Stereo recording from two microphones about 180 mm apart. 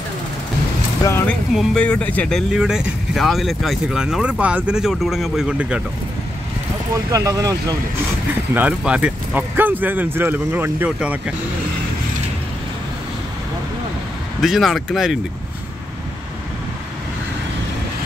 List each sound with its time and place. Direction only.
1.0 s speech: 15° left (ahead or behind)
1.5 s speech: centre (ahead or behind)
7.1 s speech: 20° right (ahead or behind)
8.5 s speech: 5° right (ahead or behind)
14.4 s speech: centre (ahead or behind)